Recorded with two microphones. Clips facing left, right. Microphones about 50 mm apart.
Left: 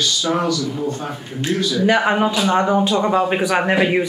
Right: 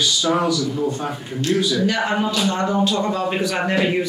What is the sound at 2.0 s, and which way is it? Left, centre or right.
Speech, left.